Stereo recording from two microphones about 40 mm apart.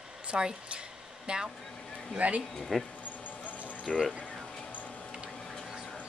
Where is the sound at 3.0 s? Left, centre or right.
Left.